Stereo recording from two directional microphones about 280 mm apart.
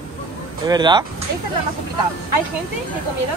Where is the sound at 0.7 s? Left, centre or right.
Centre.